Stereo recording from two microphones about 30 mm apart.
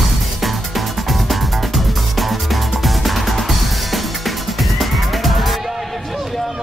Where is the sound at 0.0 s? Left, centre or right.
Centre.